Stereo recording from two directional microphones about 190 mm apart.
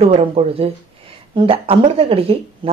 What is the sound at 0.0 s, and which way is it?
Speech, 30° right (ahead or behind).